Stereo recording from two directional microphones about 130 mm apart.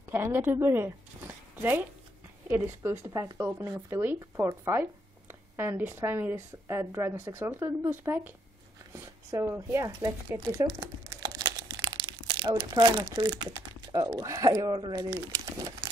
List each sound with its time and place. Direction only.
0.1 s speech: 15° right (ahead or behind)
10.5 s crumpling: 30° right (ahead or behind)